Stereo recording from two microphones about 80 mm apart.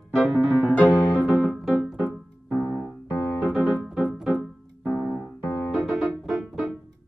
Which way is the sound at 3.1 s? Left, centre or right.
Left.